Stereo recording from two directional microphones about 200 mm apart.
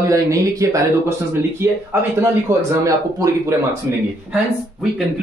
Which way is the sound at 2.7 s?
15° right (ahead or behind).